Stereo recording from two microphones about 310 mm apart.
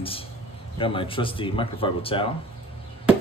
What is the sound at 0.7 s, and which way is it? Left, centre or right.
Speech, centre.